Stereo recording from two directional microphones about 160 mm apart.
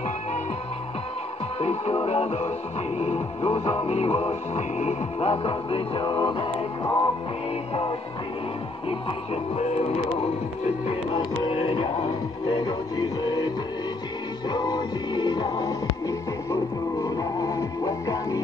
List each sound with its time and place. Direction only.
1.6 s music: 40° left (ahead or behind)
9.3 s music: 40° left (ahead or behind)
11.1 s music: 30° left (ahead or behind)
14.5 s music: 25° left (ahead or behind)